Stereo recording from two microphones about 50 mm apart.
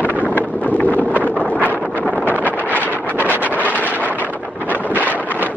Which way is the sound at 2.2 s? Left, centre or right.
Left.